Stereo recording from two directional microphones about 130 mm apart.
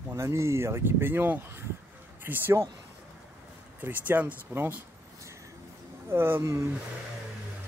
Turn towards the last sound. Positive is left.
turn(degrees=-20)  # may be behind; listen again after turning